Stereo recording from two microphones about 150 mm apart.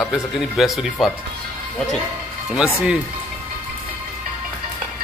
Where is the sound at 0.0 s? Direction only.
Centre (ahead or behind).